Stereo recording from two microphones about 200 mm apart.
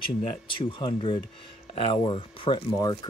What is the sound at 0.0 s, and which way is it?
Speech, 25° left (ahead or behind).